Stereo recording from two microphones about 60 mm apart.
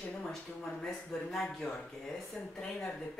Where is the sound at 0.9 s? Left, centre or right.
Centre.